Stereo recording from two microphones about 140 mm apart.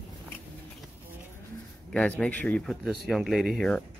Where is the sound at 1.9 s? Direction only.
5° left (ahead or behind).